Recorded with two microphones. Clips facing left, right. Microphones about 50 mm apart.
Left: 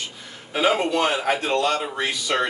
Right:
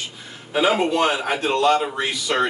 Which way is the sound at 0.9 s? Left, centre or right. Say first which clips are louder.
Right 1 dB; right.